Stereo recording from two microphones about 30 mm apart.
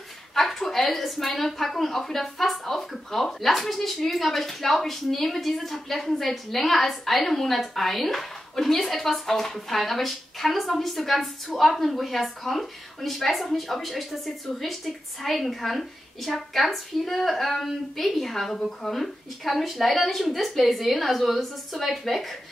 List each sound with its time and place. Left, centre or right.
0.3 s a woman's voice: centre